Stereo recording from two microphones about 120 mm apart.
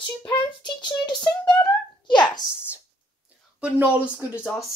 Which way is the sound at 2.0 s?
40° left (ahead or behind).